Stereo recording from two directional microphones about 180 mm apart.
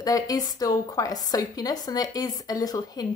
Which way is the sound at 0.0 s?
20° left (ahead or behind).